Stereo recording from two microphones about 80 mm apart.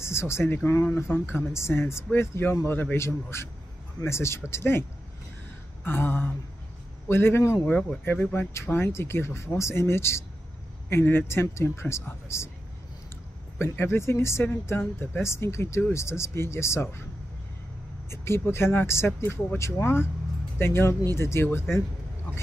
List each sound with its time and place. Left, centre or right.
0.0 s speech: left
5.9 s a sound: left
7.1 s speech: left
7.6 s speech: centre; by 12.4 s left
13.7 s speech: left
18.1 s speech: left